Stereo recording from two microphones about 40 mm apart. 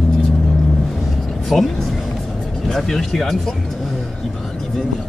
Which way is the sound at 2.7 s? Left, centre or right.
Centre.